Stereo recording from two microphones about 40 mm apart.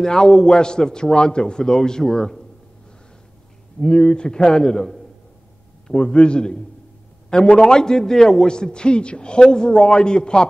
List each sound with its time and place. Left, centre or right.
0.0 s a man's voice: centre
3.8 s a man's voice: centre
5.9 s a man's voice: left